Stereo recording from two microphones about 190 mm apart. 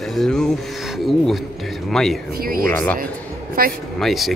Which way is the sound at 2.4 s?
50° right (ahead or behind).